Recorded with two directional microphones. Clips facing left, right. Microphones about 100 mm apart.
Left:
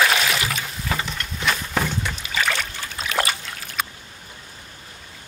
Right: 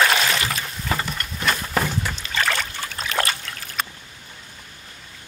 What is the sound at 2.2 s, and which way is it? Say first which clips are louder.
Rowboat: even; 5° left (ahead or behind).